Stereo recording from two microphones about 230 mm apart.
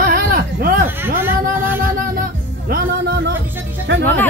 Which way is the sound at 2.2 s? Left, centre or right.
Right.